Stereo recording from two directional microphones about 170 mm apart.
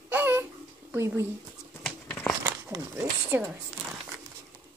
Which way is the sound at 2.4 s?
15° right (ahead or behind).